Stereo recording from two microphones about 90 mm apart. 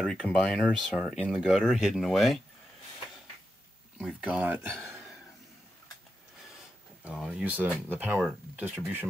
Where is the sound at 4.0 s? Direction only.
10° right (ahead or behind).